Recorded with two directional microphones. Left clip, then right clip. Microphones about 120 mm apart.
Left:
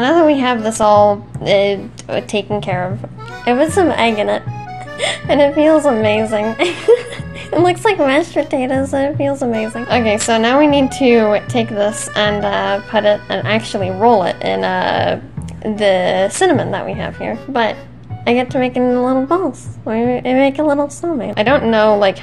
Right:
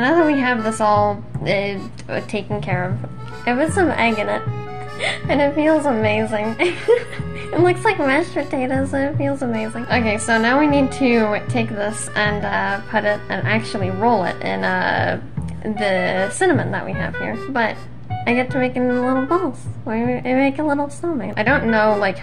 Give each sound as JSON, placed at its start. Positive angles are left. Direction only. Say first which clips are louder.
{"t": 0.0, "sound": "a woman's voice", "louder": "left 4 dB", "side_deg": 35}